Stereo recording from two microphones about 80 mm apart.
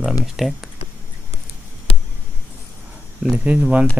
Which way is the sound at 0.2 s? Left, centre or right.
Centre.